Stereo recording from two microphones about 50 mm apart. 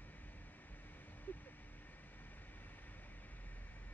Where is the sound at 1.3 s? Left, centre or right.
Left.